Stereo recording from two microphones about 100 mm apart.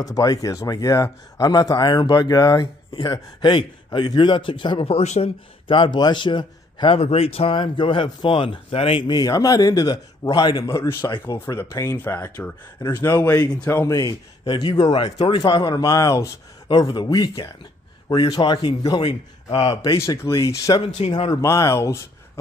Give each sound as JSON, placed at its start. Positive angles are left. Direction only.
{"t": 0.0, "sound": "a man's voice", "side_deg": 40}
{"t": 5.8, "sound": "a man's voice", "side_deg": 50}
{"t": 7.0, "sound": "a man's voice", "side_deg": 85}
{"t": 10.8, "sound": "speech", "side_deg": 25}
{"t": 14.4, "sound": "a man's voice", "side_deg": 55}
{"t": 16.6, "sound": "a man's voice", "side_deg": 50}
{"t": 20.0, "sound": "speech", "side_deg": 35}